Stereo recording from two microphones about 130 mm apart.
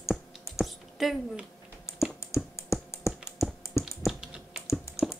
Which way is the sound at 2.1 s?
25° left (ahead or behind).